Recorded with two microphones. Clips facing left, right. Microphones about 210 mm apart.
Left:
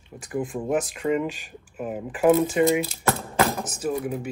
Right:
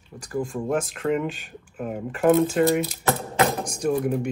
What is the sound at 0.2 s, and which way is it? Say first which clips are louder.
Speech: right 1 dB; 20° left (ahead or behind).